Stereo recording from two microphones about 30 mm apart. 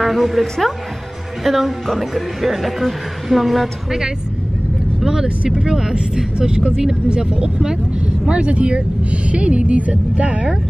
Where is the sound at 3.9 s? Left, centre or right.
Centre.